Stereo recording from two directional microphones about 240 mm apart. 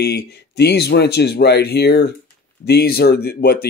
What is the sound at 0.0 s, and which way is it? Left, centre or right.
Speech, left.